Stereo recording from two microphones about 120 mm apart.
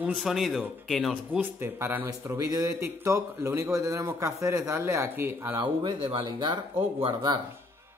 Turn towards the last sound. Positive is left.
turn(degrees=-45)  # may be behind; listen again after turning